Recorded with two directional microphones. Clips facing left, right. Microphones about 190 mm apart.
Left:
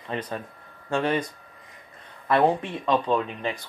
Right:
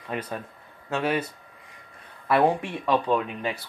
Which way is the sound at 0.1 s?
10° right (ahead or behind).